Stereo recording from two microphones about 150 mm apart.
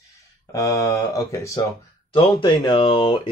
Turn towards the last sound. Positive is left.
turn(degrees=35)  # may be behind; listen again after turning